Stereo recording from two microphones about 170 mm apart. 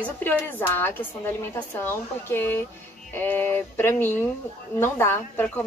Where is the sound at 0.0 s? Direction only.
10° left (ahead or behind).